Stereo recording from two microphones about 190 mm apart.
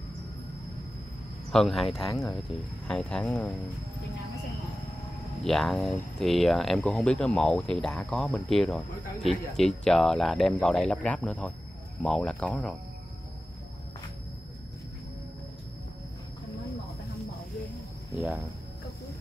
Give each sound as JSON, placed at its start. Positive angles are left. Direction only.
{"t": 1.5, "sound": "speech", "side_deg": 0}
{"t": 2.9, "sound": "speech", "side_deg": 5}
{"t": 5.4, "sound": "speech", "side_deg": 0}
{"t": 18.1, "sound": "speech", "side_deg": 0}